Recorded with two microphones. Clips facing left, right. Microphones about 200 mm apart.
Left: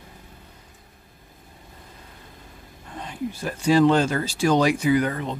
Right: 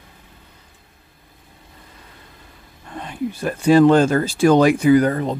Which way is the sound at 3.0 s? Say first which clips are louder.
Right 5 dB; 60° right (ahead or behind).